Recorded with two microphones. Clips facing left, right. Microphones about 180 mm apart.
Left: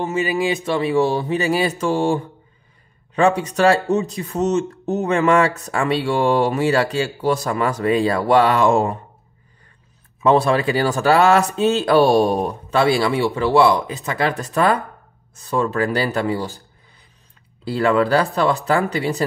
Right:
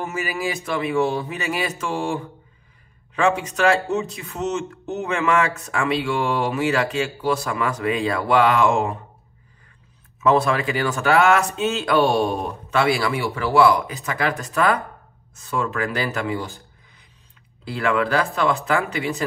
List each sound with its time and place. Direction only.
0.1 s speech: 25° left (ahead or behind)
10.2 s speech: 30° left (ahead or behind)
17.6 s speech: 35° left (ahead or behind)